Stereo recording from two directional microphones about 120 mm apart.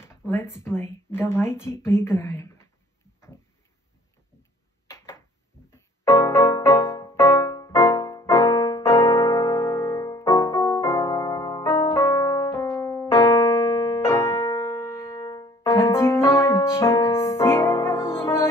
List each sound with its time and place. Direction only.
0.0 s speech: 20° left (ahead or behind)
4.8 s a sound: 25° left (ahead or behind)
5.7 s music: 25° left (ahead or behind)